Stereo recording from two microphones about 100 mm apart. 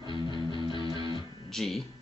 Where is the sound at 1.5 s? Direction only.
5° left (ahead or behind).